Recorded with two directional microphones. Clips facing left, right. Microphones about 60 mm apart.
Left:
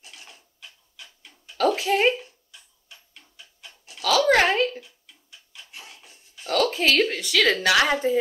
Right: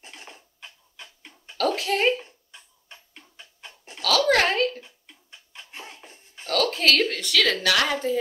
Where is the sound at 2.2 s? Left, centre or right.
Right.